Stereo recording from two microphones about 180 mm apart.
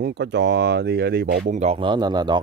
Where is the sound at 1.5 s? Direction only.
35° right (ahead or behind).